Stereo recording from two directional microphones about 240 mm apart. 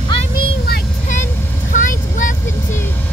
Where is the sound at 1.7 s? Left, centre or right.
Left.